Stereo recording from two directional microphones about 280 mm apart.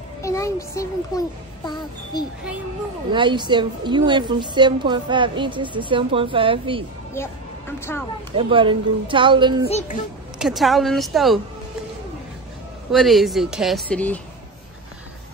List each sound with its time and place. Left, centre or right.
0.2 s a child's voice: centre
3.1 s a woman's voice: centre
7.9 s speech: centre
8.4 s a woman's voice: centre
9.7 s a child's voice: left
10.4 s speech: centre
12.9 s speech: centre